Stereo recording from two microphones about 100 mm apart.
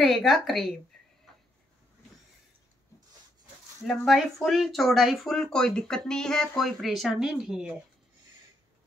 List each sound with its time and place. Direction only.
0.0 s speech: centre (ahead or behind)
3.8 s speech: centre (ahead or behind)